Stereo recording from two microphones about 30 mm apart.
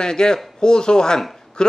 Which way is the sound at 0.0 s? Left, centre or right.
Left.